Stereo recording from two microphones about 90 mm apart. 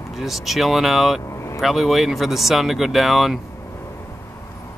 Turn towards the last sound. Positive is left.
turn(degrees=0)  # may be behind; listen again after turning